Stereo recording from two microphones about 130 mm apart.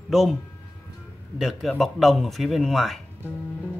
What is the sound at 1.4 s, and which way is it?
Speech, centre (ahead or behind).